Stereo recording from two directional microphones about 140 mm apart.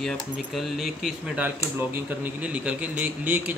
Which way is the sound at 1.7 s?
15° right (ahead or behind).